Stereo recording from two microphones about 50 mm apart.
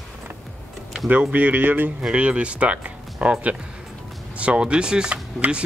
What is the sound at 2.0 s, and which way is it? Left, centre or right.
Speech, centre.